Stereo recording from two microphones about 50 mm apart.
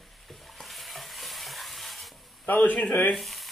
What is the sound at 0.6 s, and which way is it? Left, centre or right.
Stir, centre.